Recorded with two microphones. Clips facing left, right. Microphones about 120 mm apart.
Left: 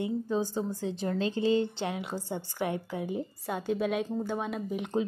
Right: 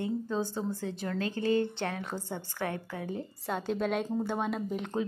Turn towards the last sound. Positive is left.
turn(degrees=0)  # may be behind; listen again after turning